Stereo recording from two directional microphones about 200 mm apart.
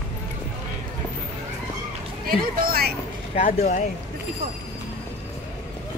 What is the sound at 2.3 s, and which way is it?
Speech, 50° right (ahead or behind).